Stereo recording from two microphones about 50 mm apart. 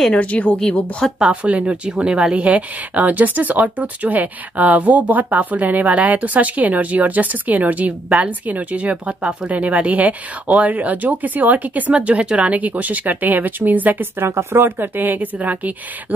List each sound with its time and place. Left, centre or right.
0.1 s a woman's voice: left
1.2 s speech: right
14.2 s speech: right